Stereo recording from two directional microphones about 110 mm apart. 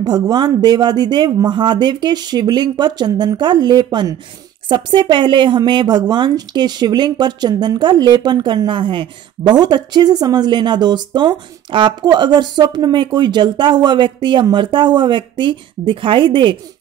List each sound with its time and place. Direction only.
0.0 s speech: 40° right (ahead or behind)